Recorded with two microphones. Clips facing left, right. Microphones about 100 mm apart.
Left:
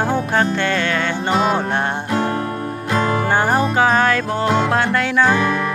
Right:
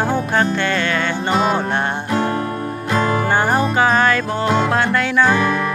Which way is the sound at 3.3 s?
90° left.